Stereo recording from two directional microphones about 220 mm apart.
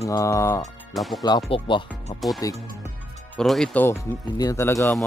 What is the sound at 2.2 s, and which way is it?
Speech, centre (ahead or behind).